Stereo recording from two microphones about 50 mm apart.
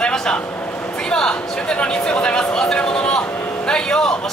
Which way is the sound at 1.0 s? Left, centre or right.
Centre.